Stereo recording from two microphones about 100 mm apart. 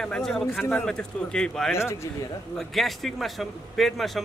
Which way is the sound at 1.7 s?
25° left (ahead or behind).